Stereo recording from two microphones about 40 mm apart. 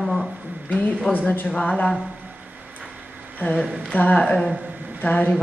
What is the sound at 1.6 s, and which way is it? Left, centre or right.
Speech, left.